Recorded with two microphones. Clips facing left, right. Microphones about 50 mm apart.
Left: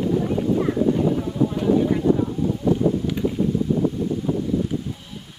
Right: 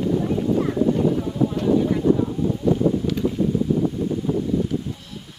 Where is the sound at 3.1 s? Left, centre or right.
Centre.